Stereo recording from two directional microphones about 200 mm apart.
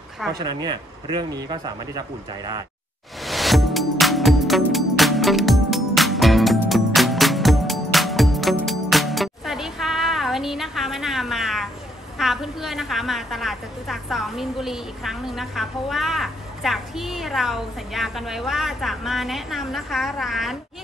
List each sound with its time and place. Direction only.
0.3 s speech: 20° right (ahead or behind)
3.3 s music: centre (ahead or behind)
12.2 s a woman's voice: centre (ahead or behind)